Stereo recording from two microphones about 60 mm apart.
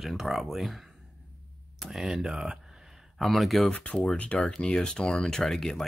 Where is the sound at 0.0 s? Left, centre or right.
Centre.